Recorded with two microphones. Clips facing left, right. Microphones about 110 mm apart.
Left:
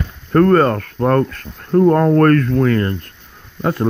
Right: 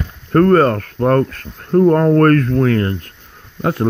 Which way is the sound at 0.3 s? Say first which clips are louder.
Right 1 dB; 40° right (ahead or behind).